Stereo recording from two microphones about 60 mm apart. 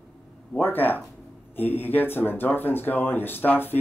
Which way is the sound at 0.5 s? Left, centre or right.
Left.